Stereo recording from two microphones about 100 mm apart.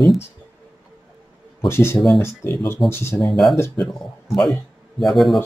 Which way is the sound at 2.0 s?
Centre (ahead or behind).